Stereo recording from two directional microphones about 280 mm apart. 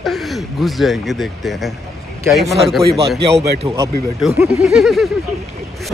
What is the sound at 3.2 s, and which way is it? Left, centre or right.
Speech, right.